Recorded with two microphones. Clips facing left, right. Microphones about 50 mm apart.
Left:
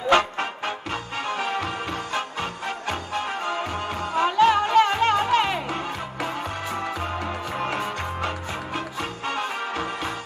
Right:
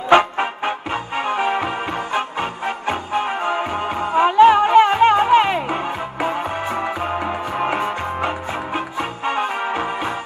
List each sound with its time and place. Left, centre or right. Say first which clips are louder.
0.1 s music: right 6 dB; right
2.9 s music: right 7 dB; right